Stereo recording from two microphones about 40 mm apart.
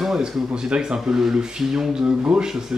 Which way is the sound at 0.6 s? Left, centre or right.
Right.